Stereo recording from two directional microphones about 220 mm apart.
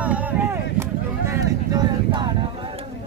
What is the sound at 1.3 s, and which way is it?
Vehicle, 15° right (ahead or behind).